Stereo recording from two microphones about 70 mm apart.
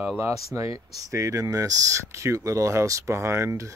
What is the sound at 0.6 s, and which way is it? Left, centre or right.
Speech, right.